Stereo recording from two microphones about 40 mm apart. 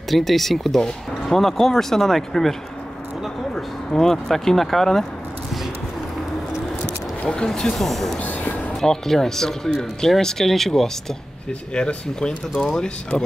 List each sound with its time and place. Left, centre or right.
0.1 s speech: centre
0.7 s speech: centre
3.5 s speech: centre
7.2 s speech: centre
7.6 s speech: centre
8.2 s music: left
8.8 s speech: centre
11.7 s speech: left